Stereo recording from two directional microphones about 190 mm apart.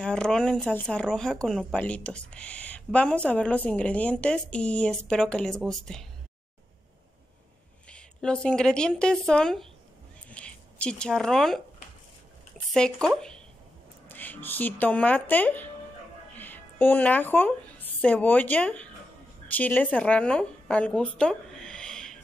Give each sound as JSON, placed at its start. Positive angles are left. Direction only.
{"t": 0.0, "sound": "speech", "side_deg": 5}
{"t": 7.9, "sound": "a woman's voice", "side_deg": 5}
{"t": 12.7, "sound": "a woman's voice", "side_deg": 5}